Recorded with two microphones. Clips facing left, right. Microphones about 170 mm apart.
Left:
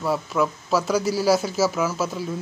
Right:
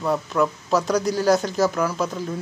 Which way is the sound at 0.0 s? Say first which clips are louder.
Right 1 dB; 5° left (ahead or behind).